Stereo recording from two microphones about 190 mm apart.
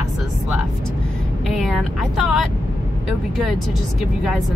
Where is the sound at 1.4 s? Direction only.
Centre (ahead or behind).